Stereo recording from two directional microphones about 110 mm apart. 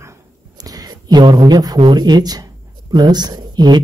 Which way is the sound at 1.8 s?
45° right (ahead or behind).